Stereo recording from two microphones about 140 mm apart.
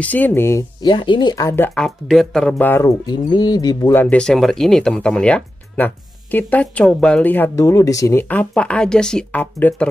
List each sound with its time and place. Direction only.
0.0 s speech: 10° left (ahead or behind)
0.8 s speech: 35° left (ahead or behind)
1.8 s speech: centre (ahead or behind)
2.7 s speech: 25° left (ahead or behind)
3.9 s speech: 10° left (ahead or behind)